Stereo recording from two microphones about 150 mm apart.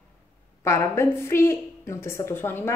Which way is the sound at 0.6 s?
20° left (ahead or behind).